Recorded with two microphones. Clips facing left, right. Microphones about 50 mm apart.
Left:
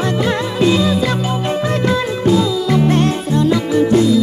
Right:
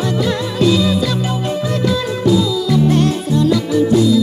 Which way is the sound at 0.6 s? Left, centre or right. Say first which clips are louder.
Even; left.